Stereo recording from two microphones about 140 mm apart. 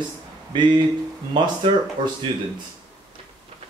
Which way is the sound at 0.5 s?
35° right (ahead or behind).